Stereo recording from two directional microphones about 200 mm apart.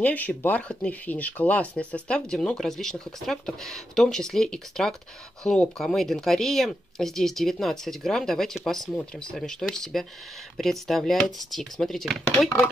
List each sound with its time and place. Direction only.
0.0 s speech: 5° left (ahead or behind)